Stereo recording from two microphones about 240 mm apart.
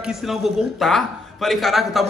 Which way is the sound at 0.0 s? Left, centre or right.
Centre.